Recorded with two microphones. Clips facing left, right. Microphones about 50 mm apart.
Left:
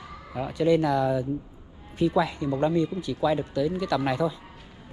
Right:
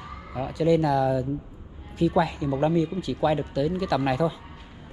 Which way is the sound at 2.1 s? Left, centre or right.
Right.